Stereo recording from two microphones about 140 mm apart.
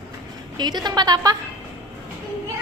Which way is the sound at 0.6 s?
30° right (ahead or behind).